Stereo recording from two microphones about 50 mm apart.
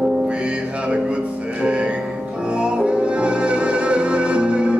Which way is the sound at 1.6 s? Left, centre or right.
Right.